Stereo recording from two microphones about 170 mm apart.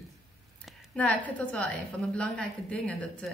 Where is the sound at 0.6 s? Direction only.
5° left (ahead or behind).